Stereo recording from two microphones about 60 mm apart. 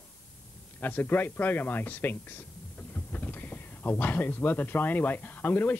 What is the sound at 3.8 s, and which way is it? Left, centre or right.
Speech, left.